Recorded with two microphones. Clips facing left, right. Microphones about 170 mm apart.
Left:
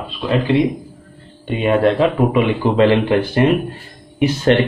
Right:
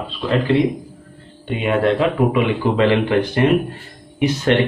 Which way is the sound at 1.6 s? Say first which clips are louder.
Left 3 dB; 35° left (ahead or behind).